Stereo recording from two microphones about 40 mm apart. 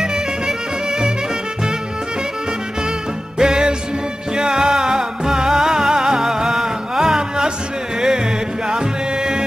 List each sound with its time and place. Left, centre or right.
0.0 s music: centre
3.3 s music: centre
8.6 s music: centre